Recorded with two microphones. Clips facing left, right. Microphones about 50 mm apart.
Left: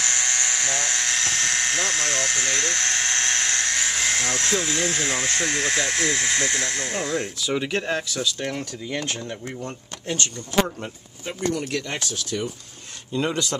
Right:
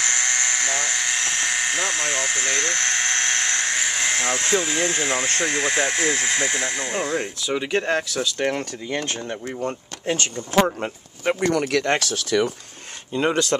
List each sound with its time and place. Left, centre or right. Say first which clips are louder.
0.0 s electric toothbrush: right 2 dB; centre
5.3 s speech: right 2 dB; centre
8.4 s speech: right 6 dB; right
9.6 s speech: right 6 dB; right
11.2 s speech: right 6 dB; right
13.1 s speech: right 3 dB; right